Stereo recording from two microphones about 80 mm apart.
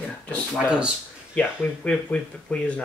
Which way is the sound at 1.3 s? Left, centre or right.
Centre.